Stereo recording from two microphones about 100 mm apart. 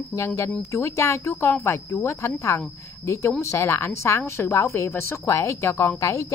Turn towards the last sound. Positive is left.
turn(degrees=30)  # may be behind; listen again after turning